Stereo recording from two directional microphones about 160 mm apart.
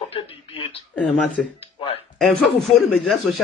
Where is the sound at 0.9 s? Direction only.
10° left (ahead or behind).